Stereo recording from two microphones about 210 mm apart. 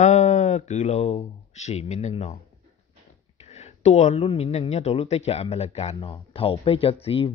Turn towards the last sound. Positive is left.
turn(degrees=25)  # may be behind; listen again after turning